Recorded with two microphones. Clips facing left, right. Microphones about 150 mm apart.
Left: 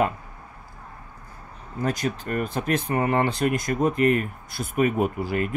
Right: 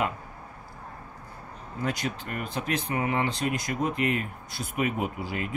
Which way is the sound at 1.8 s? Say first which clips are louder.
Left 5 dB; 45° left (ahead or behind).